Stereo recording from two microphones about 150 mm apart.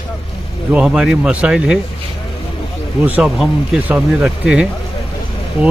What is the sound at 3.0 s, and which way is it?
Speech, 10° right (ahead or behind).